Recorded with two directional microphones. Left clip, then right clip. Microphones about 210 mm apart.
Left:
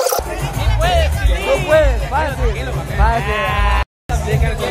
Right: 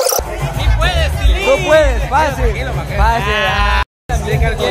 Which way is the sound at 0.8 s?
50° right (ahead or behind).